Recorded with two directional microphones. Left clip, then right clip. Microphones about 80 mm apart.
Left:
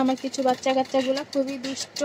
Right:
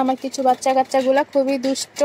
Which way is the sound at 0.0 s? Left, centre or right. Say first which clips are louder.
Right 5 dB; right.